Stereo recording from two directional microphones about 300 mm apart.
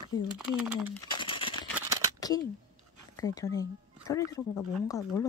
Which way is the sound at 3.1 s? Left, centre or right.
Centre.